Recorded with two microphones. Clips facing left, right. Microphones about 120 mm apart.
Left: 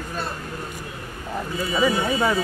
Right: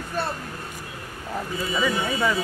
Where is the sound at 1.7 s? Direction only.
30° left (ahead or behind).